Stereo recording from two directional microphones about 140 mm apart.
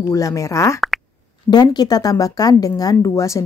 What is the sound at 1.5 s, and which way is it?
Speech, 30° left (ahead or behind).